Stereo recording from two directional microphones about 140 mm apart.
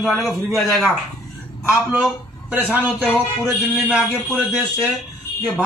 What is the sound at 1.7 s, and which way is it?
A man's voice, 10° right (ahead or behind).